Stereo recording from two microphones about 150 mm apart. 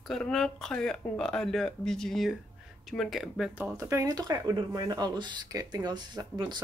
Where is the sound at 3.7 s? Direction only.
20° right (ahead or behind).